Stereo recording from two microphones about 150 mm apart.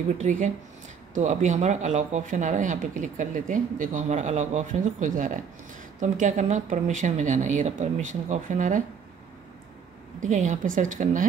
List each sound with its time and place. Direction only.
0.2 s speech: 55° right (ahead or behind)
10.2 s speech: 55° right (ahead or behind)